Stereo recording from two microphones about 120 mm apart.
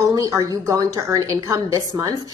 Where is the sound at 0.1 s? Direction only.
30° right (ahead or behind).